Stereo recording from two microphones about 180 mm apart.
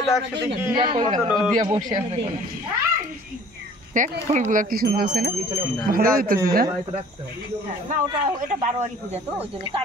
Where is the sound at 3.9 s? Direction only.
45° right (ahead or behind); by 5.3 s 65° right (ahead or behind).